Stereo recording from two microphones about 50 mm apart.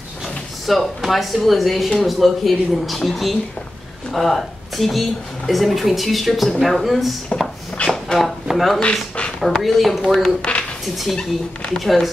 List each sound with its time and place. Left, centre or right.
0.7 s speech: centre
7.3 s speech: left
7.9 s a sound: centre
8.5 s speech: centre
11.8 s speech: centre